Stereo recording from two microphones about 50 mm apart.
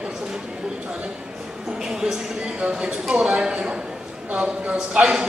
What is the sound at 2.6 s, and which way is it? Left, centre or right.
A man's voice, centre.